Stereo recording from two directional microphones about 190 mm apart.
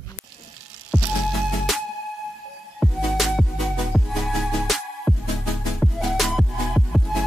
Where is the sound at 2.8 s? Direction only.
Centre (ahead or behind).